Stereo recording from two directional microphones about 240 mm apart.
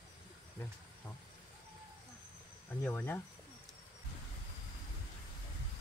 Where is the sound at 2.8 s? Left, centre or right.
Centre.